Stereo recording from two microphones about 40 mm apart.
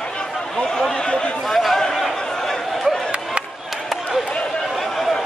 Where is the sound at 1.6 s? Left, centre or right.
Centre.